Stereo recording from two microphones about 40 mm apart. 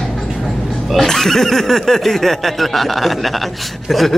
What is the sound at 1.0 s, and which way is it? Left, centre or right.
Speech, centre.